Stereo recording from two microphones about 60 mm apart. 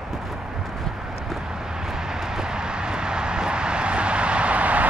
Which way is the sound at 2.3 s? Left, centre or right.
Centre.